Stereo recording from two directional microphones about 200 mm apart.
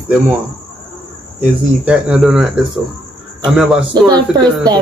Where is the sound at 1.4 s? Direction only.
5° right (ahead or behind).